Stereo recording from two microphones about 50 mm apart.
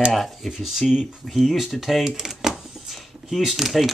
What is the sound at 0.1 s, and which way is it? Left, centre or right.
Speech, centre.